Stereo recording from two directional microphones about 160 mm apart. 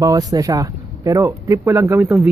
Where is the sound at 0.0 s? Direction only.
20° right (ahead or behind).